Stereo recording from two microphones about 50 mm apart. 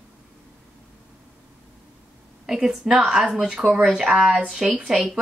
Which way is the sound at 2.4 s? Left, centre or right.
Centre.